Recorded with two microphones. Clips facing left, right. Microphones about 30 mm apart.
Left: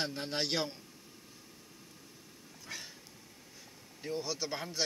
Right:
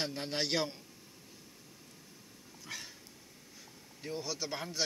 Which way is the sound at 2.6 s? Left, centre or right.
Centre.